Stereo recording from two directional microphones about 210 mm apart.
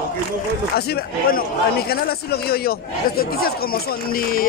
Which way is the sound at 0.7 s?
45° left (ahead or behind).